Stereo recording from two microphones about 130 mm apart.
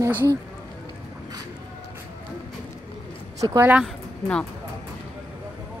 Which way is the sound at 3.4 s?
25° right (ahead or behind).